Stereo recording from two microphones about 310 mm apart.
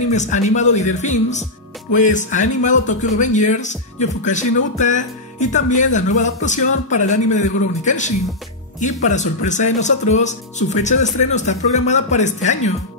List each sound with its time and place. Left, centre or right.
0.1 s speech: left